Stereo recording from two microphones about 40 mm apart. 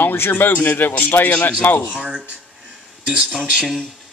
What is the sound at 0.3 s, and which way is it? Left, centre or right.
A man's voice, left.